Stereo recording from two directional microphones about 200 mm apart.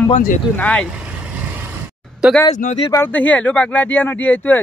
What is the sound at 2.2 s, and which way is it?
Speech, 5° right (ahead or behind).